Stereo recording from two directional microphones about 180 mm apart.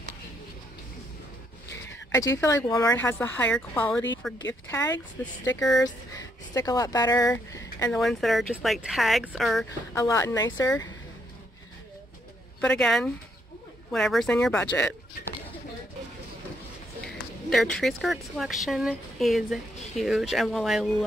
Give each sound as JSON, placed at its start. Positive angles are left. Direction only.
{"t": 2.1, "sound": "speech", "side_deg": 15}
{"t": 7.9, "sound": "speech", "side_deg": 0}
{"t": 9.9, "sound": "speech", "side_deg": 15}
{"t": 12.5, "sound": "a woman's voice", "side_deg": 5}
{"t": 17.5, "sound": "speech", "side_deg": 5}